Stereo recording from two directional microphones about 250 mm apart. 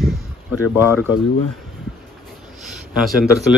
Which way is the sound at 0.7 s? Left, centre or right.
Centre.